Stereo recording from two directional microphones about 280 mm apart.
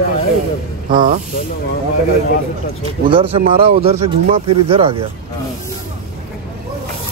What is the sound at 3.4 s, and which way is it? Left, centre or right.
Speech, right.